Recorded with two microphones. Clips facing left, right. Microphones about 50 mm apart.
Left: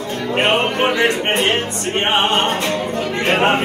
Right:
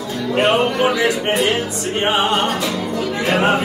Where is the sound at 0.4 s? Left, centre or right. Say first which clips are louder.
Right 1 dB; left.